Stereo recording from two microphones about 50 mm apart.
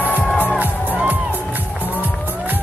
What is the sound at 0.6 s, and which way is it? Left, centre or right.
Music, right.